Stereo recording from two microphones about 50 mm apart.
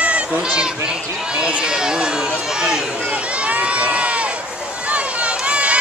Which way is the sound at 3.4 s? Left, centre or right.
Right.